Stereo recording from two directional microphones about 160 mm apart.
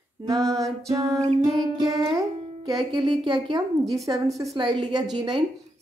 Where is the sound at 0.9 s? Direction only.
20° right (ahead or behind).